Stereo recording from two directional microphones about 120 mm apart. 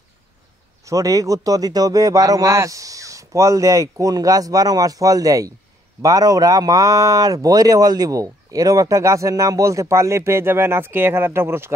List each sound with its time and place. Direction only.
0.8 s speech: 25° right (ahead or behind)